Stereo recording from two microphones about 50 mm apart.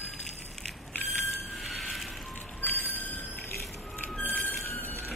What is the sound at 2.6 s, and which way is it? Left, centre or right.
Vehicle, left.